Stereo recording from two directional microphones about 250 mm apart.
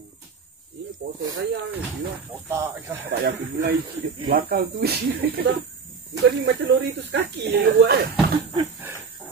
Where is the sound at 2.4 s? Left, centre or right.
Centre.